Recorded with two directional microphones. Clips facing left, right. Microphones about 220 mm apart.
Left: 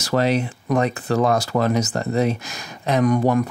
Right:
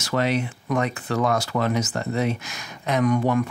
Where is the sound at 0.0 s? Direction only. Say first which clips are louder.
Left 4 dB; 35° left (ahead or behind).